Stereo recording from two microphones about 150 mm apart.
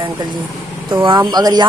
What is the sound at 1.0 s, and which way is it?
Speech, 30° right (ahead or behind).